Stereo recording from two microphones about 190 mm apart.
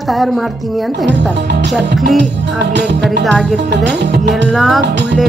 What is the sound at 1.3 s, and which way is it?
Music, 60° right (ahead or behind).